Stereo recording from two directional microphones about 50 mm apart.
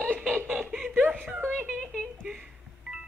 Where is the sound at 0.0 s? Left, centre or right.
Right.